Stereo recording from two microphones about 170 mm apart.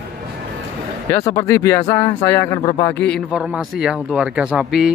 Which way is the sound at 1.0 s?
20° left (ahead or behind).